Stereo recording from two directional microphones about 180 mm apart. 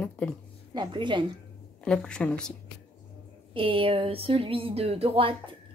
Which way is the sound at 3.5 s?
30° right (ahead or behind).